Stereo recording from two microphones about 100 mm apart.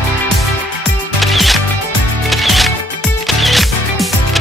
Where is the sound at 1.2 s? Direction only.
Centre (ahead or behind).